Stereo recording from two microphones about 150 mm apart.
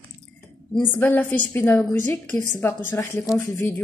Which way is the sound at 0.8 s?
10° left (ahead or behind).